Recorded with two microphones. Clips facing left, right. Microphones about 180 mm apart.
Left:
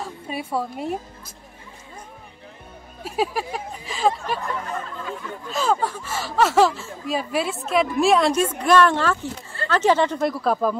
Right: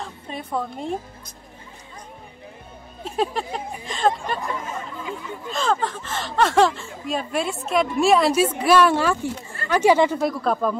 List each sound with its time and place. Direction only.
0.0 s a woman's voice: 10° left (ahead or behind)
3.0 s speech: 5° left (ahead or behind)
4.4 s speech: 15° right (ahead or behind)
5.5 s speech: 5° left (ahead or behind); by 10.3 s 10° right (ahead or behind)
10.4 s speech: 5° left (ahead or behind)